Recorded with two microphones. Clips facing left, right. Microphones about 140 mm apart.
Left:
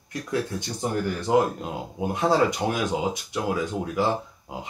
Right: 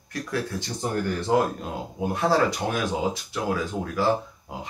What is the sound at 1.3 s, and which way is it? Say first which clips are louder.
Speech: left 2 dB; 15° left (ahead or behind).